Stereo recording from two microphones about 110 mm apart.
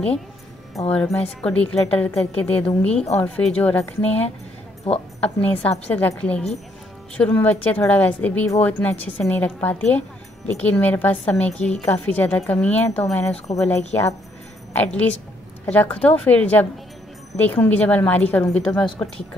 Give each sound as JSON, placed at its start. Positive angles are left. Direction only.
{"t": 0.8, "sound": "a woman's voice", "side_deg": 10}
{"t": 11.5, "sound": "a woman's voice", "side_deg": 90}
{"t": 11.8, "sound": "a woman's voice", "side_deg": 15}